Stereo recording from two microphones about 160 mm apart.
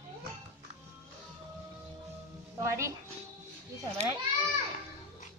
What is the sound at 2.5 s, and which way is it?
Speech, 20° right (ahead or behind).